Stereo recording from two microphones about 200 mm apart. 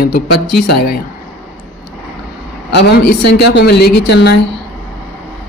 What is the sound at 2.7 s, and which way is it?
A woman's voice, 55° left (ahead or behind).